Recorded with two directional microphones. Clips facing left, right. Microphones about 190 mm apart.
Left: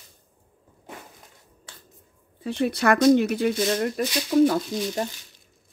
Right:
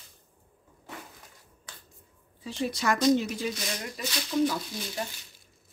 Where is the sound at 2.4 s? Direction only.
60° left (ahead or behind).